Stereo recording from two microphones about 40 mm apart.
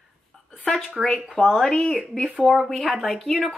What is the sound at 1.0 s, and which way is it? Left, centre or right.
Speech, centre.